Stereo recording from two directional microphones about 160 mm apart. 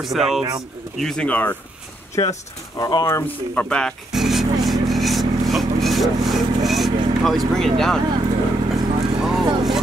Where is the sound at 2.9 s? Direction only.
20° left (ahead or behind).